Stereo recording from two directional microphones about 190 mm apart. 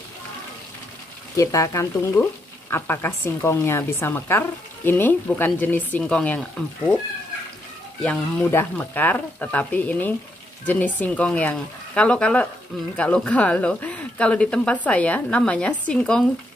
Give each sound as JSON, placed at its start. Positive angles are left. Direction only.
{"t": 1.3, "sound": "a woman's voice", "side_deg": 15}
{"t": 8.0, "sound": "a woman's voice", "side_deg": 5}